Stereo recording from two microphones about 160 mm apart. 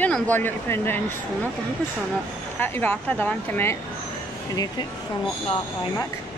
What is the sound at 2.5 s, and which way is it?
Speech, 15° left (ahead or behind).